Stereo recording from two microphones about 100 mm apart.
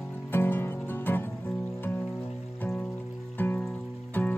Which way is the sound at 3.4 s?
15° left (ahead or behind).